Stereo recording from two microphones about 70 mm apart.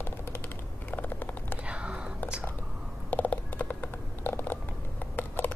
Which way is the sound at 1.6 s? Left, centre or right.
Centre.